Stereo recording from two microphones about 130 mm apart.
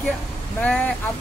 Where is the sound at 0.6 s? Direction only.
10° left (ahead or behind).